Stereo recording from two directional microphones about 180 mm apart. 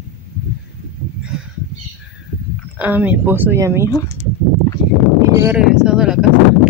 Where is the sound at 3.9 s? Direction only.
15° left (ahead or behind).